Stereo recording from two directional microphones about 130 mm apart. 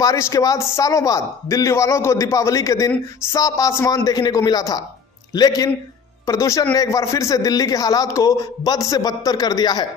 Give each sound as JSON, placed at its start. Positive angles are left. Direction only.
{"t": 0.0, "sound": "a man's voice", "side_deg": 25}